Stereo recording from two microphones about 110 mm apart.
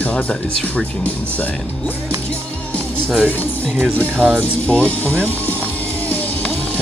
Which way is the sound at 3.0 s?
10° left (ahead or behind).